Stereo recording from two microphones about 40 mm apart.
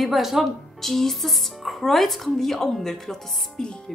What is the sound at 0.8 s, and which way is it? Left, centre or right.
A woman's voice, centre.